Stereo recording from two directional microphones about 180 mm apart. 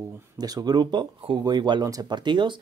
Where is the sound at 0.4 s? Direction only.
20° right (ahead or behind).